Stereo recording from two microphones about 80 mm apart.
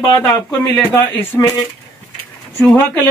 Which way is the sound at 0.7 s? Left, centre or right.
Left.